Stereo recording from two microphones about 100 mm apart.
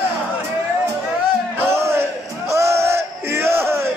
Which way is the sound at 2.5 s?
30° right (ahead or behind).